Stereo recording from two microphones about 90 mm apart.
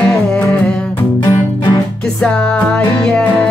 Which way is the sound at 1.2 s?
50° left (ahead or behind).